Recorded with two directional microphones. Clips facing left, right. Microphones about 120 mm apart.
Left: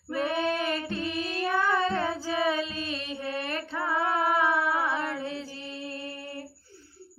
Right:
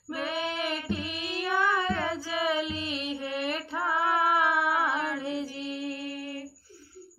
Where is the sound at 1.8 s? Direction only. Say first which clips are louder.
Left 2 dB; 30° left (ahead or behind).